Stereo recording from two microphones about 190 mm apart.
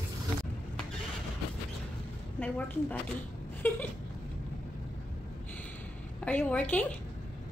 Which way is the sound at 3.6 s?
10° left (ahead or behind).